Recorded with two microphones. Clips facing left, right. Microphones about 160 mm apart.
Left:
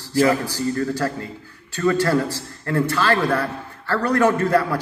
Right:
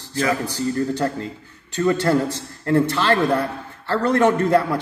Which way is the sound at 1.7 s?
20° right (ahead or behind).